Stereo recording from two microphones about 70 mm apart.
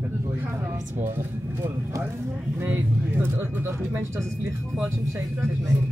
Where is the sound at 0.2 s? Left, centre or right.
Right.